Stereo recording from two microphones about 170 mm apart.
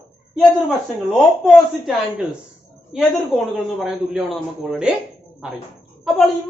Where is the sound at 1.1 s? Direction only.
Centre (ahead or behind).